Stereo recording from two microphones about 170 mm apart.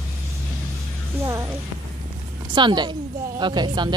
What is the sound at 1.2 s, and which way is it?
Speech, 15° right (ahead or behind).